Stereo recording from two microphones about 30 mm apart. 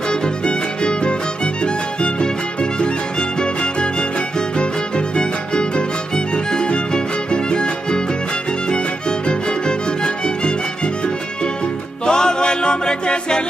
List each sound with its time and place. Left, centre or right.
0.1 s music: left
9.3 s music: left
12.1 s music: left